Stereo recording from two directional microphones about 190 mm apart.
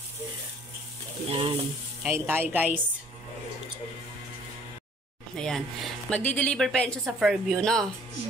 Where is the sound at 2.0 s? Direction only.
10° right (ahead or behind).